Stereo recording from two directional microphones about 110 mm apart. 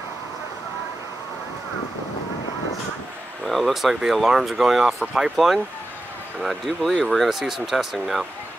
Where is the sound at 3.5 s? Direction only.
Centre (ahead or behind).